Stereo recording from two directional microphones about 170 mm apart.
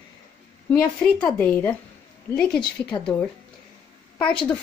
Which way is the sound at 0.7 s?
10° left (ahead or behind).